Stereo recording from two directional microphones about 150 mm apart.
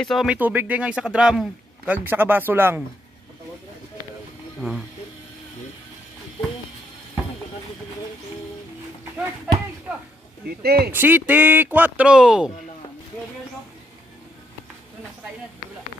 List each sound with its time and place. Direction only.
0.0 s speech: centre (ahead or behind)
4.6 s speech: 5° right (ahead or behind)
10.4 s speech: 90° right
10.9 s speech: 10° right (ahead or behind)